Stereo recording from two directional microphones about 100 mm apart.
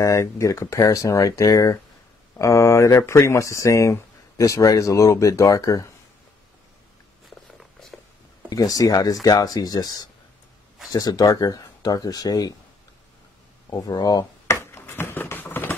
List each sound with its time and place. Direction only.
0.0 s speech: 30° left (ahead or behind)
8.5 s speech: 35° left (ahead or behind)
13.7 s speech: 40° left (ahead or behind)
14.6 s a sound: 25° left (ahead or behind)